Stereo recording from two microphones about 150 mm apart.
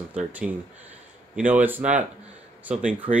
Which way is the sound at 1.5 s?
10° right (ahead or behind).